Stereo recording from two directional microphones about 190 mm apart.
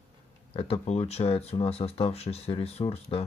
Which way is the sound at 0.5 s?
30° left (ahead or behind).